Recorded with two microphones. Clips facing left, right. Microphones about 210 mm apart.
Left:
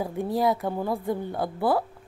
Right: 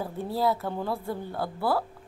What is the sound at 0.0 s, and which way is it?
Speech, 15° left (ahead or behind).